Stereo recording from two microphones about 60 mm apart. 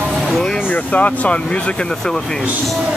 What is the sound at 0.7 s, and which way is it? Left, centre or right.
Music, left.